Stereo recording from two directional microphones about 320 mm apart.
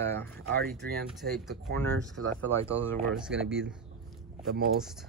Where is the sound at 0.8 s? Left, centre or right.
Right.